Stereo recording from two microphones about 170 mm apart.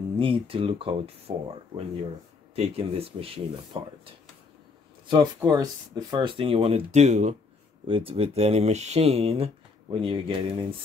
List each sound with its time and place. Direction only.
0.2 s speech: 30° right (ahead or behind)
5.0 s speech: 25° right (ahead or behind); by 7.3 s 40° right (ahead or behind)
7.8 s speech: 30° right (ahead or behind)